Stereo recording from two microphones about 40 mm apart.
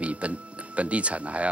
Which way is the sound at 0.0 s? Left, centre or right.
Right.